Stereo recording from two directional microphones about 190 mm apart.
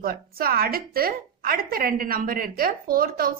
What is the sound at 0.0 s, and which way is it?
A woman's voice, 50° right (ahead or behind).